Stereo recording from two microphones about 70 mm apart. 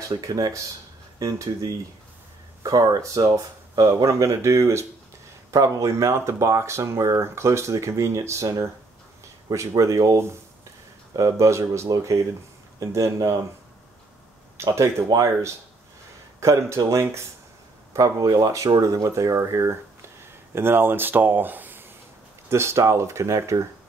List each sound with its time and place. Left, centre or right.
0.2 s speech: right
1.2 s speech: right
4.0 s speech: right
5.5 s speech: right
14.6 s speech: right
16.3 s speech: right
17.9 s speech: right
18.7 s speech: right
20.5 s speech: right
22.5 s speech: right